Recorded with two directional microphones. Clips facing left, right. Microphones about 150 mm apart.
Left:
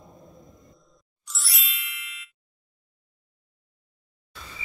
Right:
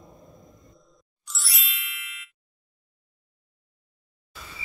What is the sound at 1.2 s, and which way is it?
Ding, centre (ahead or behind).